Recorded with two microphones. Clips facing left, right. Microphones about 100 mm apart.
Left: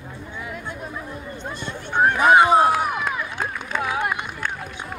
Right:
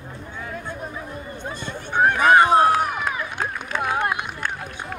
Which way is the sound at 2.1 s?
5° left (ahead or behind).